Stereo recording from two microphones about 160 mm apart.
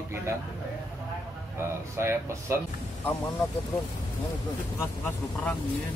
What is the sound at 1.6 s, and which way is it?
Speech, 15° right (ahead or behind).